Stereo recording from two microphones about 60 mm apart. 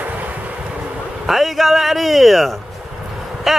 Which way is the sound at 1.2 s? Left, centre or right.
Centre.